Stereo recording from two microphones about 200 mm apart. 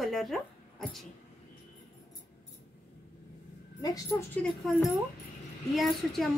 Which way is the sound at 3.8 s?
20° left (ahead or behind).